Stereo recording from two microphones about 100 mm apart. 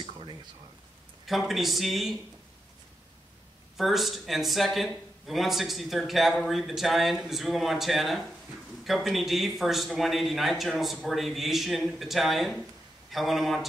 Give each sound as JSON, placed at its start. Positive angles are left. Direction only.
{"t": 0.0, "sound": "a sound", "side_deg": -55}
{"t": 1.2, "sound": "speech", "side_deg": 0}
{"t": 3.7, "sound": "speech", "side_deg": 0}